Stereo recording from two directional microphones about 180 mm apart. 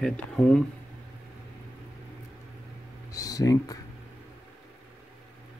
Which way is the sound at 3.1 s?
20° left (ahead or behind).